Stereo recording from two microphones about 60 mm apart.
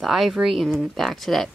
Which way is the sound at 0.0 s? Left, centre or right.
Centre.